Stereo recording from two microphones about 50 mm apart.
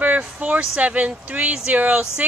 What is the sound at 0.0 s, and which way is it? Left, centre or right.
A woman's voice, right.